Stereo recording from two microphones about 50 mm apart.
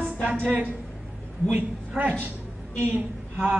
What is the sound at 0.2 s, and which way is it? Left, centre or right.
A woman's voice, right.